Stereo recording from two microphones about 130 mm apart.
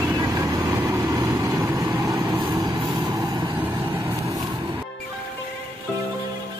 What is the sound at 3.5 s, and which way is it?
Vehicle, 15° right (ahead or behind).